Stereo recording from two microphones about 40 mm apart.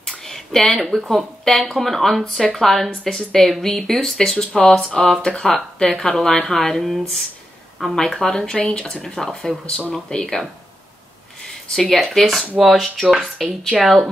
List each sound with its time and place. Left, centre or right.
0.2 s a sound: centre
0.7 s speech: centre
3.0 s speech: centre
3.3 s speech: centre
12.0 s speech: centre